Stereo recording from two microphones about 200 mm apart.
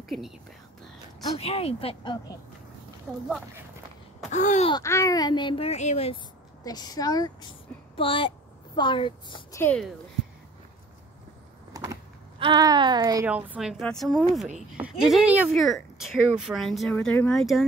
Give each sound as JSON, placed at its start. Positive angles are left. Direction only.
{"t": 1.4, "sound": "speech", "side_deg": 30}
{"t": 3.1, "sound": "speech", "side_deg": 5}
{"t": 4.3, "sound": "a sound", "side_deg": 35}
{"t": 4.6, "sound": "speech", "side_deg": 15}
{"t": 6.6, "sound": "speech", "side_deg": 20}
{"t": 9.6, "sound": "speech", "side_deg": 10}
{"t": 11.7, "sound": "power windows", "side_deg": -15}
{"t": 12.4, "sound": "a woman's voice", "side_deg": -20}
{"t": 13.3, "sound": "speech", "side_deg": -5}